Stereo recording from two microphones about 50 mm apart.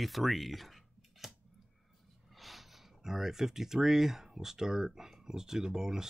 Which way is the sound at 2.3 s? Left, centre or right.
Centre.